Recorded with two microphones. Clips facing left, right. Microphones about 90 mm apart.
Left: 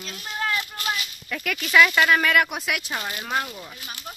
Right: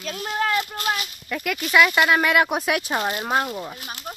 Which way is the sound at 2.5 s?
40° right (ahead or behind).